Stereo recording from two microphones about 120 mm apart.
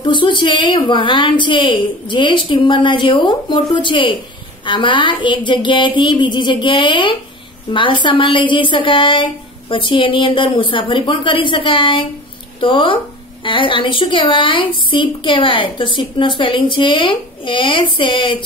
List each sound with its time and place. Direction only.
0.0 s a woman's voice: 40° left (ahead or behind)
4.6 s a sound: 40° left (ahead or behind)
7.7 s a woman's voice: 45° left (ahead or behind)